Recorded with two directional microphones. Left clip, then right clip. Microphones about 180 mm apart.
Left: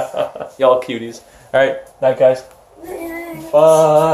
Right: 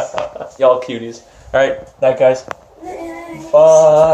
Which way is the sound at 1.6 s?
5° right (ahead or behind).